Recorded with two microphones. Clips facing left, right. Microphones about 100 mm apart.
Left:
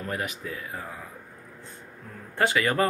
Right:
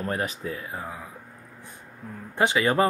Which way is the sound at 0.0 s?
35° right (ahead or behind).